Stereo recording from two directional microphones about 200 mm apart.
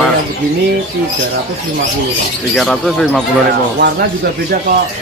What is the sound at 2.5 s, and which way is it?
Speech, centre (ahead or behind).